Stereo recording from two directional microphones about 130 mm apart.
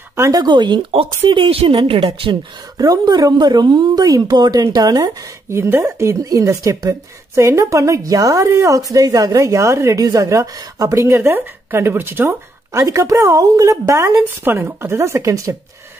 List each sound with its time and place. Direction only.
0.1 s speech: 25° right (ahead or behind); by 2.3 s 45° right (ahead or behind)
2.8 s speech: 30° right (ahead or behind)